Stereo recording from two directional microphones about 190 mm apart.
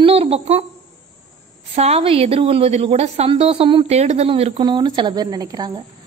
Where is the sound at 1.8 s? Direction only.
35° right (ahead or behind).